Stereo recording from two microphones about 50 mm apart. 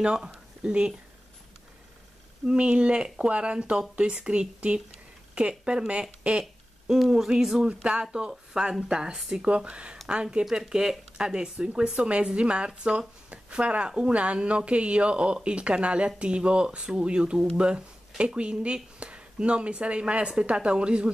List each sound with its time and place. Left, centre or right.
0.0 s speech: centre
2.4 s speech: right
6.9 s speech: centre
10.4 s speech: centre